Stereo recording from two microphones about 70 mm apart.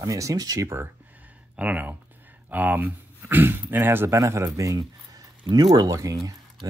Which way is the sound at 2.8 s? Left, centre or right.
Right.